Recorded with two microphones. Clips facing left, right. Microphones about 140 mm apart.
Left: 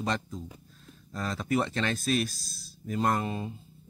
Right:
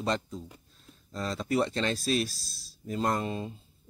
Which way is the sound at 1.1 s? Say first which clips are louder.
Even; 50° left (ahead or behind).